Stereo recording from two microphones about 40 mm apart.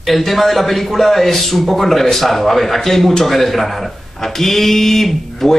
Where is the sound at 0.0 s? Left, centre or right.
Centre.